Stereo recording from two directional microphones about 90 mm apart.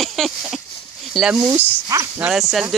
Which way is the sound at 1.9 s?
35° right (ahead or behind).